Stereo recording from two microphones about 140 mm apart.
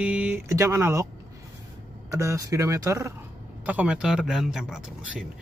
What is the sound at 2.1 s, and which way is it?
Speech, 25° right (ahead or behind).